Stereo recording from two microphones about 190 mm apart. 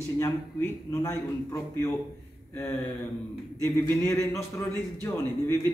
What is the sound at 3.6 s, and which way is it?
A man's voice, 15° left (ahead or behind).